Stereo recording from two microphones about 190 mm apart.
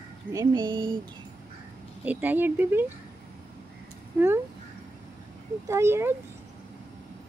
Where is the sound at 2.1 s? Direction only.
10° right (ahead or behind).